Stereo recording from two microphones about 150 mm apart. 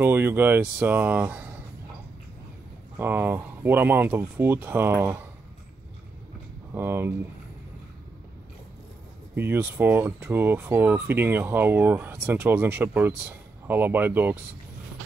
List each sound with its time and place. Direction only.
0.0 s speech: 15° right (ahead or behind)
3.0 s speech: 15° right (ahead or behind)
6.7 s speech: 15° right (ahead or behind)
9.3 s speech: 15° right (ahead or behind)